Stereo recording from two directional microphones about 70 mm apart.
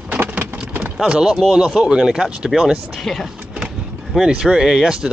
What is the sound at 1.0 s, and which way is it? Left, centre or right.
Speech, centre.